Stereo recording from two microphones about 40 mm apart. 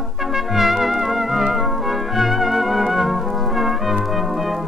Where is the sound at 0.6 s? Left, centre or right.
Centre.